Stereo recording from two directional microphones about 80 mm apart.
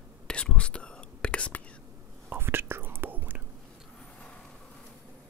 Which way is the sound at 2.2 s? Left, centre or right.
Right.